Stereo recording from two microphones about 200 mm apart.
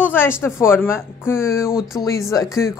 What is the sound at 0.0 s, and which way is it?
Speech, 10° left (ahead or behind).